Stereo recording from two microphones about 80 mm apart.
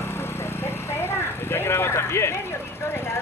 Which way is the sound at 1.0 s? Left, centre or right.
Left.